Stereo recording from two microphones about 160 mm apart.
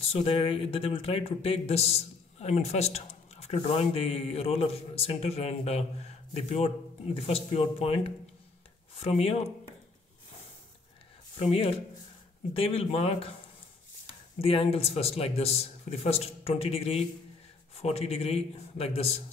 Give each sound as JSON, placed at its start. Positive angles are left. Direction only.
{"t": 0.1, "sound": "speech", "side_deg": 35}
{"t": 11.3, "sound": "speech", "side_deg": 35}
{"t": 14.4, "sound": "speech", "side_deg": 35}